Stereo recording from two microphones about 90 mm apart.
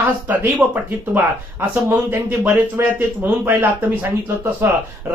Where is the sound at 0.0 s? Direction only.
20° right (ahead or behind).